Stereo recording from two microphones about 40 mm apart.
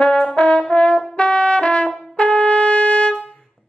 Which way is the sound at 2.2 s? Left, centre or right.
Left.